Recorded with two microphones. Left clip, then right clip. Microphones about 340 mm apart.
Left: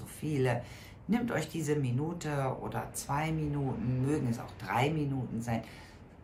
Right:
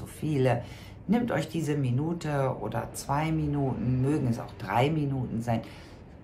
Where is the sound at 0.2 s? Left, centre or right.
Centre.